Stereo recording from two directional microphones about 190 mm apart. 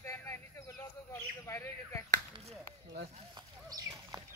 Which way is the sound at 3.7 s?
20° right (ahead or behind).